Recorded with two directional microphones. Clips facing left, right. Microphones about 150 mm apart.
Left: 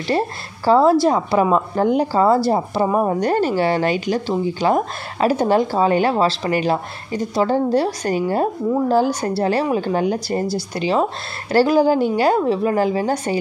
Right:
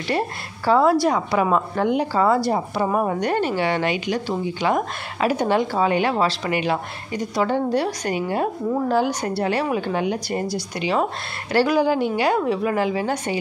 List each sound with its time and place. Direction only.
0.7 s a woman's voice: 30° left (ahead or behind)